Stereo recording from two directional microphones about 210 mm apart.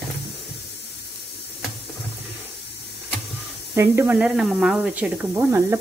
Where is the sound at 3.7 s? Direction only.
15° right (ahead or behind).